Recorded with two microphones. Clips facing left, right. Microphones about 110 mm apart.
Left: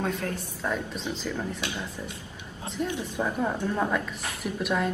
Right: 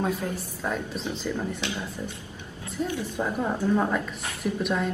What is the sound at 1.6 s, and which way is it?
Speech, 20° left (ahead or behind).